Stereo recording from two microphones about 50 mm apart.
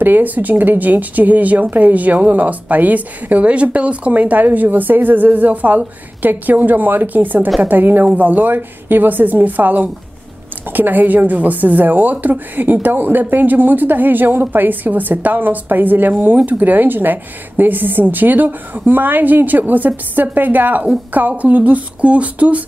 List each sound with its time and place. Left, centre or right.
0.0 s speech: right